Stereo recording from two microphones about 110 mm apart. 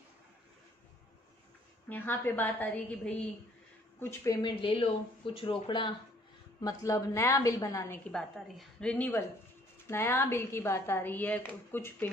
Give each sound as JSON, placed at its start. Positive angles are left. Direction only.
{"t": 1.9, "sound": "a woman's voice", "side_deg": 15}
{"t": 4.0, "sound": "a woman's voice", "side_deg": 25}
{"t": 4.4, "sound": "speech", "side_deg": 45}
{"t": 6.6, "sound": "a woman's voice", "side_deg": 35}
{"t": 8.1, "sound": "a woman's voice", "side_deg": 5}